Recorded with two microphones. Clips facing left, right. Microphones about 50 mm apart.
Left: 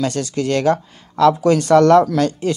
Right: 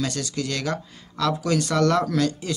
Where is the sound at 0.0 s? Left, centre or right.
Left.